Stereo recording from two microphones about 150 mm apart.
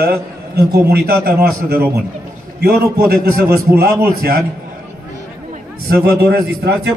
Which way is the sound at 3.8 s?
90° right.